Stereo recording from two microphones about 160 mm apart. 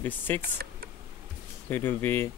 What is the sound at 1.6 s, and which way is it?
Speech, 10° left (ahead or behind).